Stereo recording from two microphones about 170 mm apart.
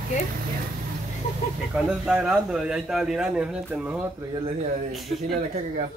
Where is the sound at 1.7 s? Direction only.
5° right (ahead or behind).